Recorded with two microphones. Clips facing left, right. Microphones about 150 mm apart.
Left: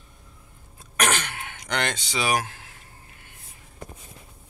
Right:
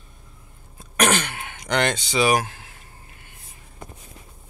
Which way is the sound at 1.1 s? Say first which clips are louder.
Right 4 dB; 10° right (ahead or behind).